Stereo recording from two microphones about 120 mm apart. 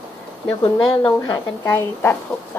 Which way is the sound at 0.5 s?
30° left (ahead or behind).